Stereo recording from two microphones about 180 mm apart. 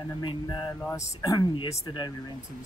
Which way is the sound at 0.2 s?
25° left (ahead or behind).